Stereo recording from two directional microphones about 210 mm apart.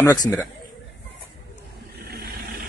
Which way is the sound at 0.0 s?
15° left (ahead or behind).